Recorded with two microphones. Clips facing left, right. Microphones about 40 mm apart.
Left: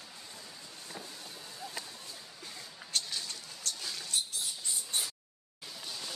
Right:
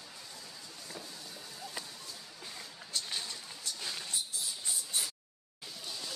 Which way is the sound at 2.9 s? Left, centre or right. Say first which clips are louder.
Left 2 dB; left.